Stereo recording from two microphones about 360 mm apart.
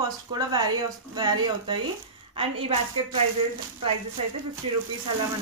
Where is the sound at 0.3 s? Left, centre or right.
Centre.